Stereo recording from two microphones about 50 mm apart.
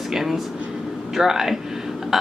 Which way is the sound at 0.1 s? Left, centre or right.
Centre.